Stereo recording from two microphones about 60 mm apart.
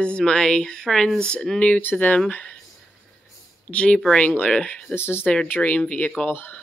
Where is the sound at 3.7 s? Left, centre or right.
Left.